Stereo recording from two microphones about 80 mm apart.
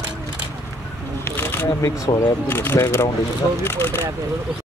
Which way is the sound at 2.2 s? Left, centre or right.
Left.